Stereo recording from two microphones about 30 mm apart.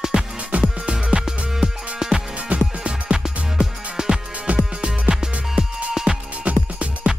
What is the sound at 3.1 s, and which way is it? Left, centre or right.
Music, centre.